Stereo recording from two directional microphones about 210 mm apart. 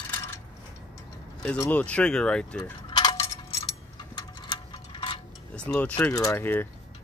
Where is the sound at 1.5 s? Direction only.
10° left (ahead or behind).